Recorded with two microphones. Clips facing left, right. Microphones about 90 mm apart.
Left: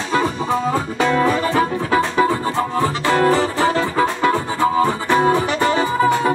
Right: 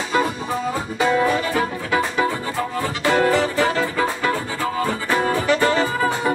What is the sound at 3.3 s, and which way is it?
Music, 30° left (ahead or behind).